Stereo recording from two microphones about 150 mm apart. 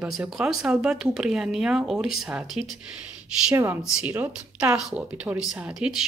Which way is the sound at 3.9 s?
10° right (ahead or behind).